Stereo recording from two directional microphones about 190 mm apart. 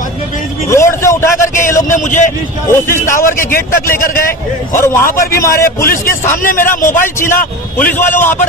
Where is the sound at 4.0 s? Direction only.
50° left (ahead or behind).